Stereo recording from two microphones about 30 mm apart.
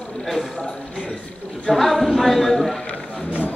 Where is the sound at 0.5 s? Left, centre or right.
Centre.